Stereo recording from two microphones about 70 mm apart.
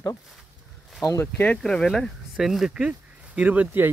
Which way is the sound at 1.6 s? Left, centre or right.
Centre.